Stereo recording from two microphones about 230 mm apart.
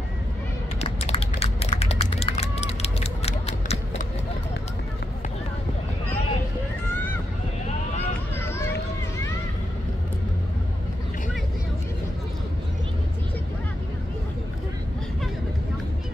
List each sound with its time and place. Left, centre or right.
0.7 s run: left
8.4 s run: centre